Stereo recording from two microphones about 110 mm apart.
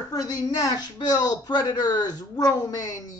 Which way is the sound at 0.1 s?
35° left (ahead or behind).